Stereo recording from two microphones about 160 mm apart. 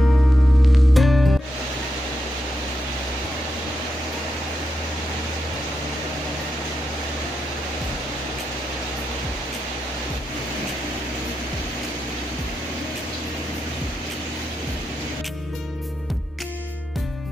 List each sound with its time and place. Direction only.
0.9 s music: centre (ahead or behind)